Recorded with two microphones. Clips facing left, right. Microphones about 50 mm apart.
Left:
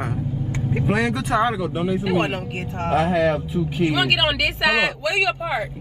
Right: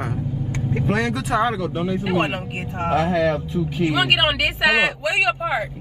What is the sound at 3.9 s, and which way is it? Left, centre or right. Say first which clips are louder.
Speech: right 2 dB; centre.